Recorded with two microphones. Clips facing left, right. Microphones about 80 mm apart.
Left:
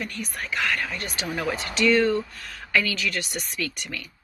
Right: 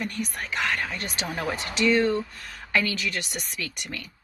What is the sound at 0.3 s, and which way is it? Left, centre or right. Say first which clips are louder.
Speech: left 4 dB; right.